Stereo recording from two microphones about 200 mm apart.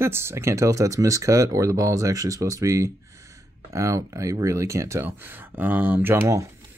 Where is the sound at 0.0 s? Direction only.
10° right (ahead or behind).